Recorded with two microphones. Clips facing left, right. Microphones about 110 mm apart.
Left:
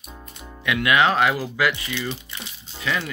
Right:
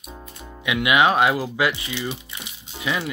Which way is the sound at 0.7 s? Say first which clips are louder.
Right 1 dB; 15° right (ahead or behind).